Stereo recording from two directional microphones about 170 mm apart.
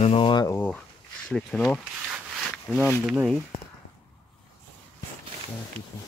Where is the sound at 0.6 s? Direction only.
5° left (ahead or behind).